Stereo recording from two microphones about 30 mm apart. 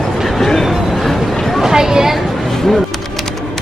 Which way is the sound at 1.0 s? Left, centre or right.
Centre.